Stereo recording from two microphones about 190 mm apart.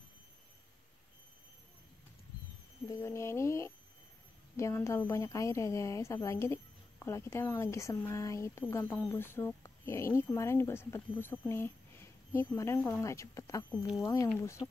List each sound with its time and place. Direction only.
2.9 s speech: 15° left (ahead or behind)